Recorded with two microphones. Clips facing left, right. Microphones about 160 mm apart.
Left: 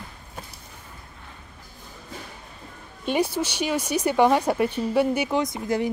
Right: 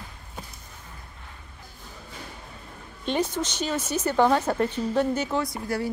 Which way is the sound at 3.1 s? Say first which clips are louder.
Left 2 dB; 10° left (ahead or behind).